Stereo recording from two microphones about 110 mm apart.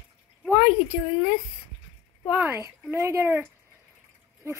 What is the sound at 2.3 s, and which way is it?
Speech, 15° right (ahead or behind).